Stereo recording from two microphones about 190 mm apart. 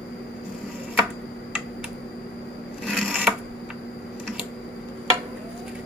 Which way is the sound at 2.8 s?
5° left (ahead or behind).